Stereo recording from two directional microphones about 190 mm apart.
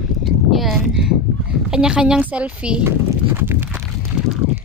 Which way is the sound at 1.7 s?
5° right (ahead or behind).